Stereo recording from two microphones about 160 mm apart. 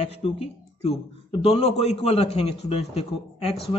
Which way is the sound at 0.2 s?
35° left (ahead or behind).